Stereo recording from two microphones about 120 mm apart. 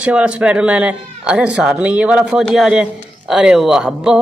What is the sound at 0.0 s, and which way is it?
Speech, 10° right (ahead or behind).